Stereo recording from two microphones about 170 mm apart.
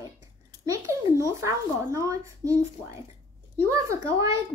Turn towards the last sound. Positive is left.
turn(degrees=-20)  # may be behind; listen again after turning